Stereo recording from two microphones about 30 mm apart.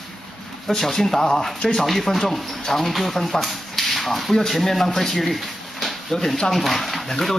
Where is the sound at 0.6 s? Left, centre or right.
Centre.